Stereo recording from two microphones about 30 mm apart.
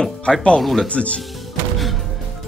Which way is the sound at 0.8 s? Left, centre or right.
Left.